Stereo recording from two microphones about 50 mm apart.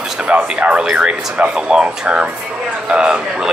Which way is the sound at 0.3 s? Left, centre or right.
Right.